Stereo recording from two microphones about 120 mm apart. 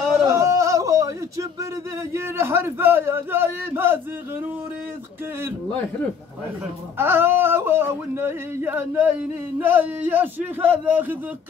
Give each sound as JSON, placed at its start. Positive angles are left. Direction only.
{"t": 0.3, "sound": "a sound", "side_deg": -25}
{"t": 2.1, "sound": "yodeling", "side_deg": -20}
{"t": 7.0, "sound": "yodeling", "side_deg": -20}
{"t": 9.6, "sound": "a man's voice", "side_deg": -15}